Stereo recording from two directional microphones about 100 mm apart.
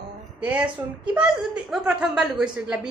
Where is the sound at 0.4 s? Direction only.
10° right (ahead or behind).